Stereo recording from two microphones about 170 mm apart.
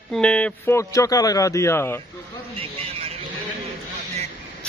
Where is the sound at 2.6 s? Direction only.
35° right (ahead or behind).